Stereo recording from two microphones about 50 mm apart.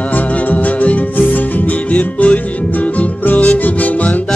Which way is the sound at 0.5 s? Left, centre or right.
Left.